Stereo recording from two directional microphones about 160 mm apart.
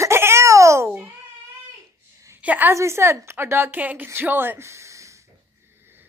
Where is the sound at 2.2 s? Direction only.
10° right (ahead or behind).